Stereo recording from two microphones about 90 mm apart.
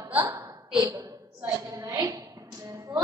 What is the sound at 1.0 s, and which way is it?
Speech, 35° right (ahead or behind).